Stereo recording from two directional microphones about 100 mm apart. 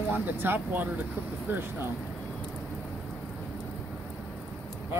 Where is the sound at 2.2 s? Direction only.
10° left (ahead or behind).